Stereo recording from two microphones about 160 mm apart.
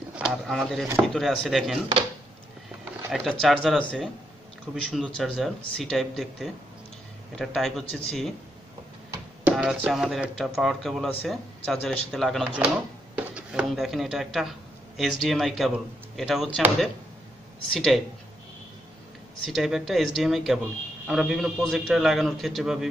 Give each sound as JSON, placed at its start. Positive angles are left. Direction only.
{"t": 0.1, "sound": "speech", "side_deg": -5}
{"t": 3.1, "sound": "speech", "side_deg": 0}
{"t": 9.4, "sound": "speech", "side_deg": -5}
{"t": 17.7, "sound": "speech", "side_deg": 0}
{"t": 19.4, "sound": "speech", "side_deg": 0}